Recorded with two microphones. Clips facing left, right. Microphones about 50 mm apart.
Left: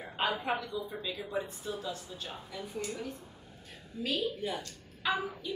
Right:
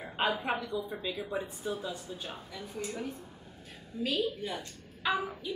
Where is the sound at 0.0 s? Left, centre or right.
Centre.